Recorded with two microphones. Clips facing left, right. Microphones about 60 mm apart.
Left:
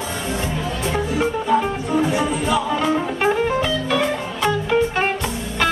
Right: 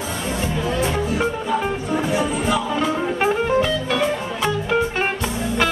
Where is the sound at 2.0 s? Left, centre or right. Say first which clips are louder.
Left 3 dB; centre.